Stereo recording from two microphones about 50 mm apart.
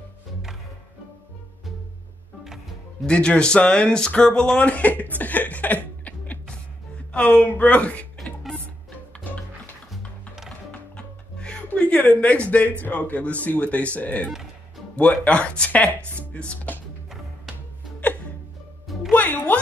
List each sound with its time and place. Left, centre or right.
2.4 s music: centre
3.1 s speech: centre
9.8 s music: centre
10.7 s music: left
12.8 s speech: left
16.2 s chopping: left
19.1 s music: left